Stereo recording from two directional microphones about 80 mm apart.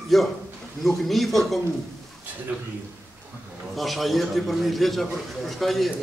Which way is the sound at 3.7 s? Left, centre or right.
Centre.